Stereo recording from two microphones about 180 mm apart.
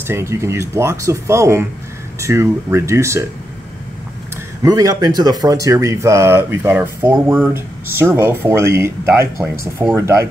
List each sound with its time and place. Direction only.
0.0 s speech: 15° right (ahead or behind)
4.6 s speech: 20° right (ahead or behind)